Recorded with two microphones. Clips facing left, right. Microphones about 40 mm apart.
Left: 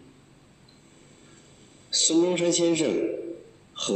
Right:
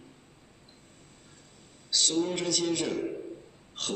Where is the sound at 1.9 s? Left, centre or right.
Left.